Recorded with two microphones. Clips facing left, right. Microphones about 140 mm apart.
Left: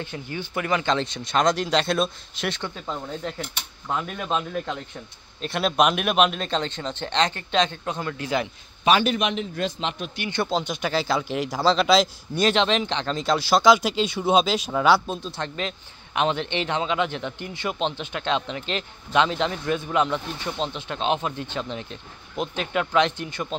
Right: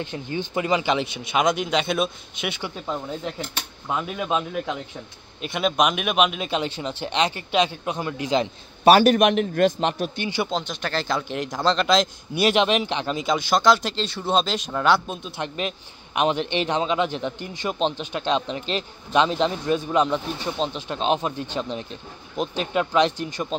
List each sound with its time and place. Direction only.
0.0 s speech: 20° right (ahead or behind)
8.8 s a man's voice: 40° right (ahead or behind)
10.5 s speech: 10° left (ahead or behind)
12.4 s speech: 15° right (ahead or behind); by 15.1 s 5° left (ahead or behind)
15.2 s speech: 10° right (ahead or behind)